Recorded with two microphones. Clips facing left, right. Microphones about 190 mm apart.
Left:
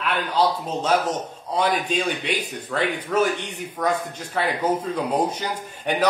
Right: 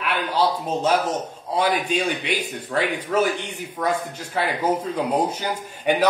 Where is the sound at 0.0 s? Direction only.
10° right (ahead or behind).